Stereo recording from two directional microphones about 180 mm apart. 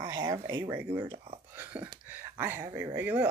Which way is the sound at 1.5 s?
10° right (ahead or behind).